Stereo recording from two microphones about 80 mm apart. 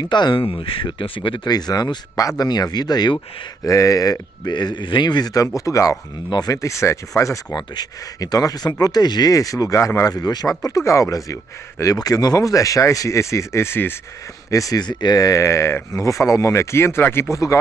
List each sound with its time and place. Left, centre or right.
0.0 s speech: left
3.6 s speech: left
5.7 s speech: left
7.5 s speech: left
9.3 s speech: left
10.6 s speech: left
14.5 s speech: left